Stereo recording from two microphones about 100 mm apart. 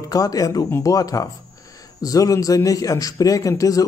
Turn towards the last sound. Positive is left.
turn(degrees=35)  # may be behind; listen again after turning